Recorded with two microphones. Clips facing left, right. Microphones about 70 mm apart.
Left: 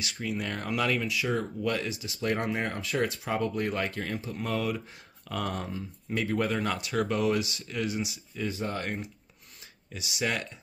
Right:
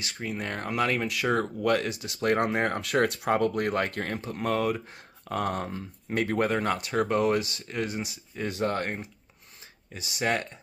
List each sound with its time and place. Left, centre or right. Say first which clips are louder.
0.0 s speech: even; right
1.0 s speech: right 3 dB; right
8.5 s speech: right 5 dB; right
8.8 s speech: right 1 dB; right